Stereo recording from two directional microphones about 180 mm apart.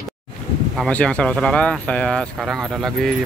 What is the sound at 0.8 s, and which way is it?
Speech, 5° left (ahead or behind).